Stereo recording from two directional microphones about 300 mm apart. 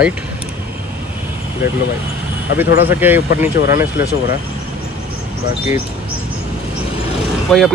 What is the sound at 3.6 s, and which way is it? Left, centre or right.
Speech, left.